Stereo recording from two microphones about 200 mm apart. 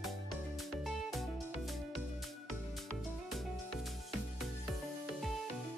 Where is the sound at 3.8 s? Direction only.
Centre (ahead or behind).